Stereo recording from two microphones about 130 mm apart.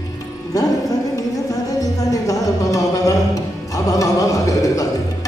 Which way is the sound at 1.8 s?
25° left (ahead or behind).